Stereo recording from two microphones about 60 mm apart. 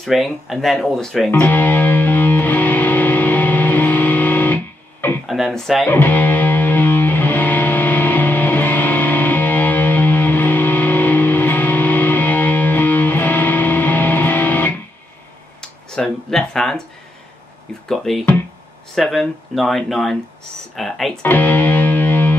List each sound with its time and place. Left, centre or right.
0.0 s speech: centre
1.4 s music: left
5.2 s a sound: centre
5.9 s music: left
15.6 s a sound: centre
17.8 s speech: centre
21.2 s music: left